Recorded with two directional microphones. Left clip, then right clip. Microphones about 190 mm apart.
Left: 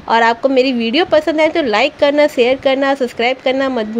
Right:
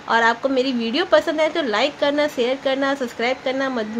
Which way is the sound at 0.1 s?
30° left (ahead or behind).